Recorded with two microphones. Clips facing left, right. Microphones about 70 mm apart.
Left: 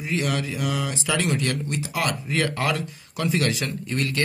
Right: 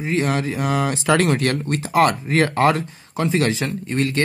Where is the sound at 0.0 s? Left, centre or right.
Right.